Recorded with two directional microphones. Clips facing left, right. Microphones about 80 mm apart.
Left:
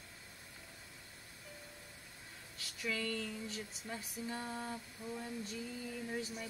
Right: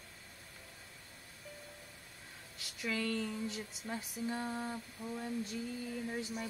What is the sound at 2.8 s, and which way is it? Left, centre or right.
Speech, centre.